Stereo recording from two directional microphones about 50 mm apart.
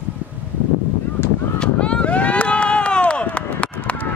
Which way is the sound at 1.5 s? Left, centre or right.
Left.